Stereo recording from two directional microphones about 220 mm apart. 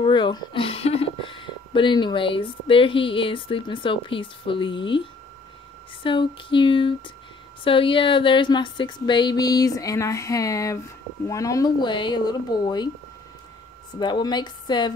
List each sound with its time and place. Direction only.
0.0 s speech: 20° left (ahead or behind)
6.0 s speech: 20° left (ahead or behind)
13.9 s speech: 20° left (ahead or behind)